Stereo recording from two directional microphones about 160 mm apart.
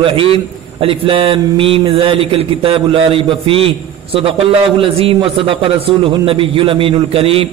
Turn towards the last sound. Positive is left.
turn(degrees=-35)  # may be behind; listen again after turning